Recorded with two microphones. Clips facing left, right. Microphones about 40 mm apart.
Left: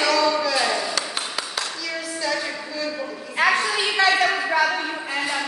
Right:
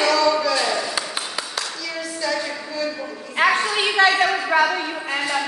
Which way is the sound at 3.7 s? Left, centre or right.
Right.